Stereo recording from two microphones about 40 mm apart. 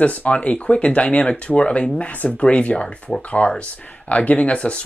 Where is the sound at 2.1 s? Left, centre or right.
Left.